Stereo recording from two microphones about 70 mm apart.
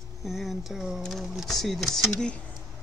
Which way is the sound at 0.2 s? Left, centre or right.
Centre.